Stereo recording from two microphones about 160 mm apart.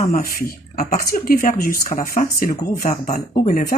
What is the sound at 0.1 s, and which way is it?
Speech, 55° left (ahead or behind).